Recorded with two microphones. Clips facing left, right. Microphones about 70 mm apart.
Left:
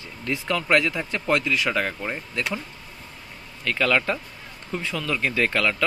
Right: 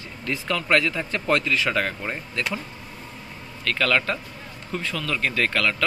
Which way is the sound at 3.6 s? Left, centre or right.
Centre.